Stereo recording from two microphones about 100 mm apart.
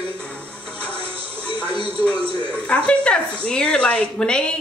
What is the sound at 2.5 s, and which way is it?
Speech, 15° left (ahead or behind).